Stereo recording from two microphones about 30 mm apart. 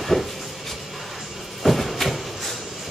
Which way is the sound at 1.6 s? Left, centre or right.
Centre.